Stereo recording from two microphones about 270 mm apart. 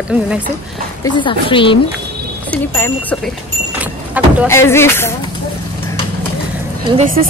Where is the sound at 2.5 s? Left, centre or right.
Centre.